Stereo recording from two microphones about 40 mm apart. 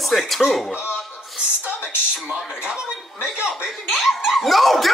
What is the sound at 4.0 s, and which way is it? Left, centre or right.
Speech, centre.